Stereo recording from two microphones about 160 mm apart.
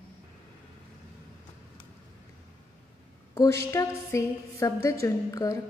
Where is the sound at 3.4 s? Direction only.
15° left (ahead or behind).